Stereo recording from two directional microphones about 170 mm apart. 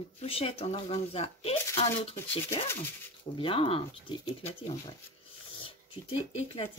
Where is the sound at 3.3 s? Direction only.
30° left (ahead or behind).